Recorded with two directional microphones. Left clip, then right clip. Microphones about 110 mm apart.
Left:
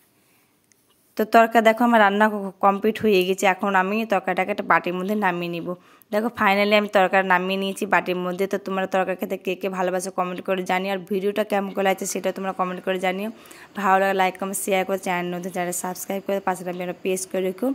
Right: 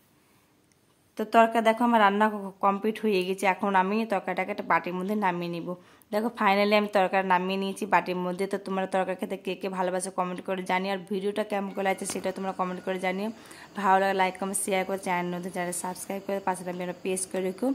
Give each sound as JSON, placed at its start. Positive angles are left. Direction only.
{"t": 1.1, "sound": "a woman's voice", "side_deg": 40}